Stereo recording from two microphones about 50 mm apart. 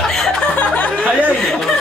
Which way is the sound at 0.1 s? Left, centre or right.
Centre.